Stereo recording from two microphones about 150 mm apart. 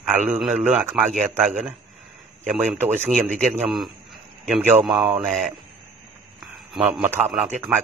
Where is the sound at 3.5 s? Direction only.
5° right (ahead or behind).